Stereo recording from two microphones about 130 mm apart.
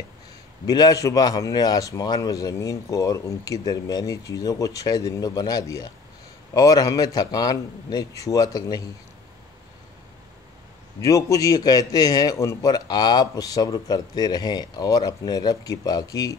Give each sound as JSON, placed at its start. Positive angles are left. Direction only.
{"t": 0.7, "sound": "a man's voice", "side_deg": 30}
{"t": 11.0, "sound": "a man's voice", "side_deg": 25}